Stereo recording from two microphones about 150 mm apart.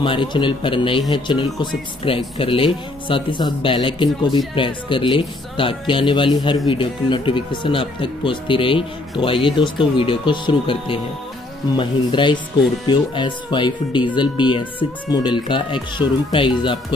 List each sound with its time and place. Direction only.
0.0 s speech: 35° left (ahead or behind)